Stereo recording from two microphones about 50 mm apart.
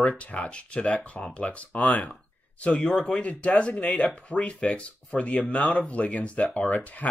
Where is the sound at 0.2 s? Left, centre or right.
Left.